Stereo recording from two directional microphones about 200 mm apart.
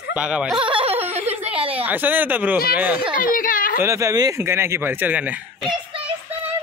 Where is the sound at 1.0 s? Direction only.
30° right (ahead or behind).